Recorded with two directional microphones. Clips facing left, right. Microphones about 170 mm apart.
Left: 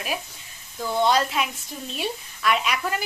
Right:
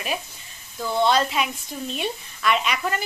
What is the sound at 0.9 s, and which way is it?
Speech, 10° left (ahead or behind).